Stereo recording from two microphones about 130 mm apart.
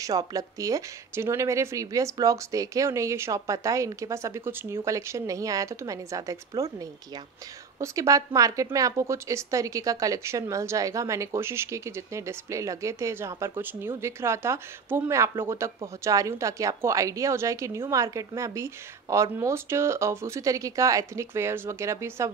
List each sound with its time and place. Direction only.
0.0 s a woman's voice: 30° right (ahead or behind)